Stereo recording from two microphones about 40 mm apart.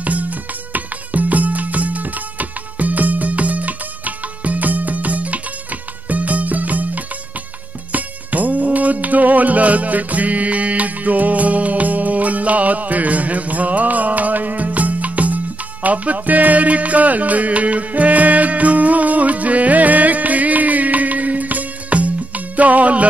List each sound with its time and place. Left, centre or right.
0.0 s music: right